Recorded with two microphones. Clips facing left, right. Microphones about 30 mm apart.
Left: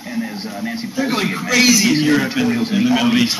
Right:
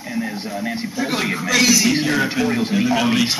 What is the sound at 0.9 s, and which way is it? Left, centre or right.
Speech, centre.